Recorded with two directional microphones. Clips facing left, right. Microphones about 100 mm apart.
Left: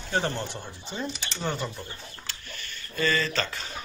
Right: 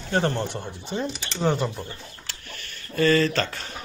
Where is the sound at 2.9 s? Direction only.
55° right (ahead or behind).